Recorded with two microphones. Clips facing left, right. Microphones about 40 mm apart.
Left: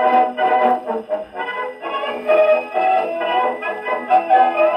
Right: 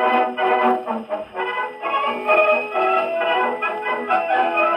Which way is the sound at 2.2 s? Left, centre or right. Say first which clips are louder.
Left 4 dB; right.